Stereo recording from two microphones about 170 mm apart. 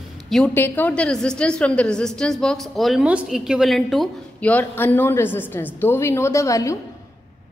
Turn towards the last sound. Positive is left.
turn(degrees=20)  # may be behind; listen again after turning